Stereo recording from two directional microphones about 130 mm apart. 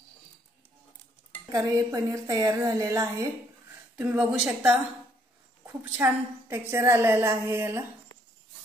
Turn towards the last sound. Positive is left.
turn(degrees=-20)  # may be behind; listen again after turning